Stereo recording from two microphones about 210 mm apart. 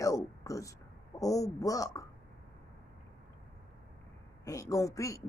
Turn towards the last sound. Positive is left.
turn(degrees=15)  # may be behind; listen again after turning